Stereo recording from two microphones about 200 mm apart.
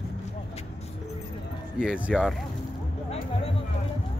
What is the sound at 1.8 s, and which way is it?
Speech, 5° right (ahead or behind).